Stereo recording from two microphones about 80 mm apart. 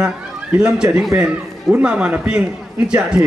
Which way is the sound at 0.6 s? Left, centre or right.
Centre.